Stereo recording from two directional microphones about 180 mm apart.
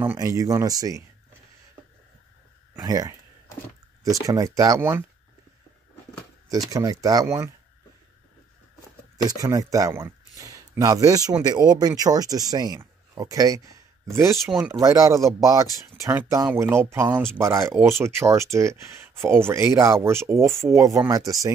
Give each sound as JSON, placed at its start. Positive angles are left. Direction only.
{"t": 0.0, "sound": "speech", "side_deg": -15}
{"t": 2.8, "sound": "speech", "side_deg": -20}
{"t": 6.7, "sound": "speech", "side_deg": -20}
{"t": 9.3, "sound": "speech", "side_deg": -20}
{"t": 14.4, "sound": "speech", "side_deg": 0}
{"t": 14.7, "sound": "speech", "side_deg": -20}